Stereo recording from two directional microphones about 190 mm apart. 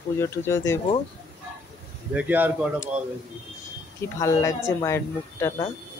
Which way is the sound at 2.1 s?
10° right (ahead or behind).